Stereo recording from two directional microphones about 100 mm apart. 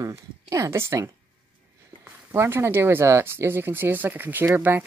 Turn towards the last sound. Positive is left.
turn(degrees=-20)  # may be behind; listen again after turning